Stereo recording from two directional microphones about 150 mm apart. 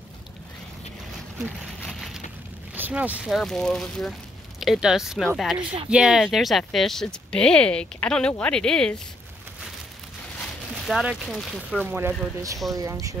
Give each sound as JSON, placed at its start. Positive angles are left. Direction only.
{"t": 1.8, "sound": "a sound", "side_deg": 0}
{"t": 2.7, "sound": "speech", "side_deg": -10}
{"t": 10.9, "sound": "speech", "side_deg": 0}
{"t": 11.8, "sound": "speech", "side_deg": -10}